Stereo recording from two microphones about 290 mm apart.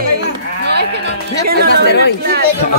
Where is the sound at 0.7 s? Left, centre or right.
Right.